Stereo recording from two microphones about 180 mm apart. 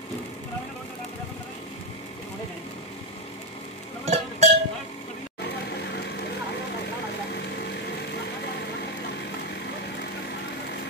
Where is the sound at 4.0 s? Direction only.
40° right (ahead or behind).